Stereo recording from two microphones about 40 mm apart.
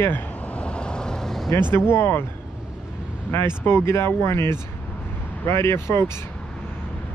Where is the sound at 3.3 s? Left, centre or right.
Left.